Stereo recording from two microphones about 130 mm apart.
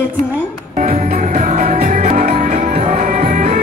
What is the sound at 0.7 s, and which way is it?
Music, 70° right (ahead or behind).